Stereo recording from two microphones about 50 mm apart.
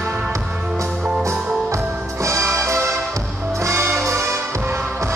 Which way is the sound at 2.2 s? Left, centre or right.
Right.